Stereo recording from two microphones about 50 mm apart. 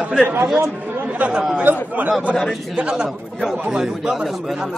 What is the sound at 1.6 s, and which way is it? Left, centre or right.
Speech, right.